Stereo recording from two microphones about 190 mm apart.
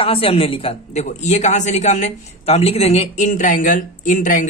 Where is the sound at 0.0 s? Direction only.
30° left (ahead or behind).